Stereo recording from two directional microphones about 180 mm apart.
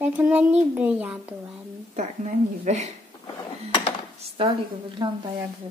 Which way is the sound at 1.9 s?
40° right (ahead or behind).